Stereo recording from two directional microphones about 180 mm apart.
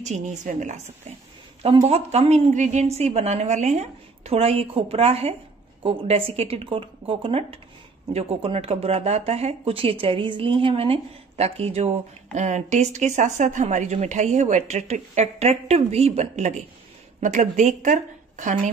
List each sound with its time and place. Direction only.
0.0 s a woman's voice: 40° right (ahead or behind)